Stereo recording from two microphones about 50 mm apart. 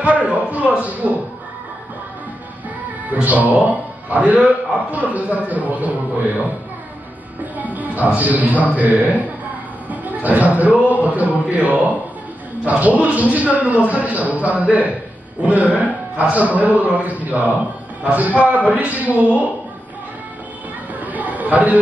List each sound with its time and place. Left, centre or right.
0.0 s a man's voice: right
3.1 s speech: right
7.5 s a man's voice: right
21.0 s chatter: right